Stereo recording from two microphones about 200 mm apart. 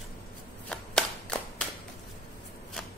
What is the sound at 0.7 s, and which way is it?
Clapping, 5° left (ahead or behind).